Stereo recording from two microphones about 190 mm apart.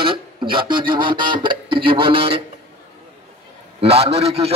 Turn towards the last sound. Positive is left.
turn(degrees=-30)  # may be behind; listen again after turning